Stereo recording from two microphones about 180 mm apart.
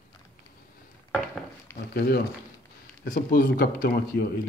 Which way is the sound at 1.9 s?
60° left (ahead or behind).